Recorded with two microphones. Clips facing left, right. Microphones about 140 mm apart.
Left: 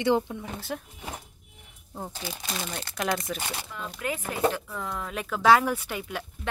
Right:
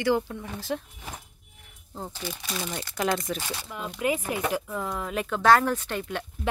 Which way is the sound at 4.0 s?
15° right (ahead or behind).